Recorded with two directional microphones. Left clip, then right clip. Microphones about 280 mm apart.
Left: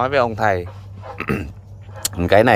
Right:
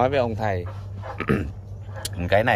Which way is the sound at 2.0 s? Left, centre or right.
Centre.